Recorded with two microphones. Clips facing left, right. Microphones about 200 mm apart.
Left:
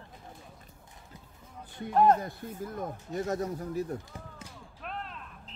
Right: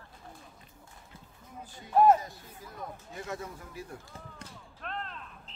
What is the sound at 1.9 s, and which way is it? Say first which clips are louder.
Music: right 1 dB; 5° right (ahead or behind).